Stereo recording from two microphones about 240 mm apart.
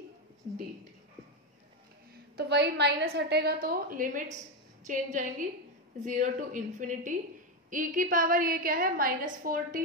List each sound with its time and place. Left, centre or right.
2.3 s a woman's voice: right